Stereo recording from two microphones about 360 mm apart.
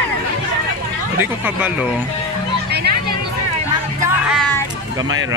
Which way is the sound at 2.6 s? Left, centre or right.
Right.